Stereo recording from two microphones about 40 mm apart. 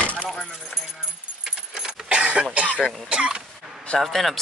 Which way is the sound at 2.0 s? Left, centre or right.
Right.